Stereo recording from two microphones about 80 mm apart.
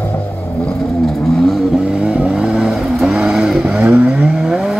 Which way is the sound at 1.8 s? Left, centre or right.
Centre.